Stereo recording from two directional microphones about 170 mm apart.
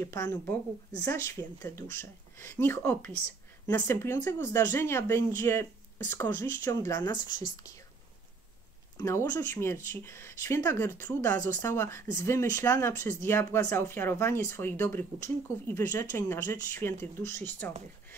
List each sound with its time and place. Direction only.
0.0 s speech: 15° left (ahead or behind)
8.9 s speech: 15° left (ahead or behind)